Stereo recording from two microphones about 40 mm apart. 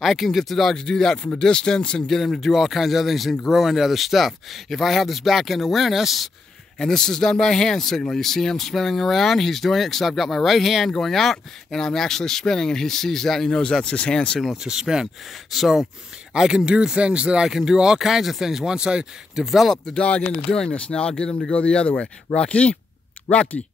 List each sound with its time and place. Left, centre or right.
0.0 s speech: centre
0.8 s speech: centre
2.0 s speech: centre
6.8 s speech: centre
14.6 s speech: centre
15.5 s speech: centre
16.3 s speech: centre
17.5 s speech: centre
19.4 s speech: centre
19.9 s speech: left
23.3 s speech: left